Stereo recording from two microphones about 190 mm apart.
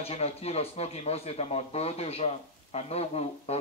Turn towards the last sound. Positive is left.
turn(degrees=35)  # may be behind; listen again after turning